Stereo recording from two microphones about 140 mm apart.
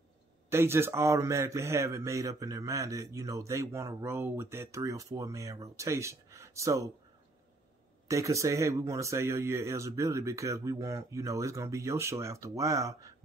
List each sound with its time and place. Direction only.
0.5 s speech: 15° right (ahead or behind)
8.1 s speech: 20° right (ahead or behind)